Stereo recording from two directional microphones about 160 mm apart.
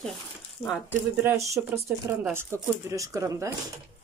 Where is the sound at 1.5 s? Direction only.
15° right (ahead or behind).